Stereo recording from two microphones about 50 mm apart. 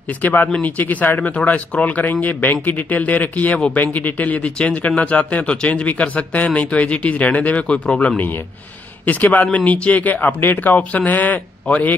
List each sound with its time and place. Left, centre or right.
0.2 s speech: left
9.0 s speech: left
10.8 s speech: left
11.7 s speech: left